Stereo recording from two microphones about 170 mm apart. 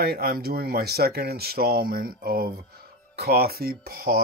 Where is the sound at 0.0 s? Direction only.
65° right (ahead or behind).